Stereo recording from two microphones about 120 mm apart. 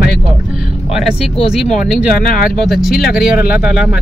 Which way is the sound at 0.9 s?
5° right (ahead or behind).